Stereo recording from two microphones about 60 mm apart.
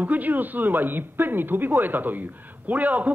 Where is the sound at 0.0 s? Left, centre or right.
Right.